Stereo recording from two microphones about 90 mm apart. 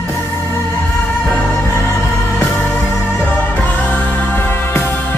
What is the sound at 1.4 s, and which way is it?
Music, 30° left (ahead or behind).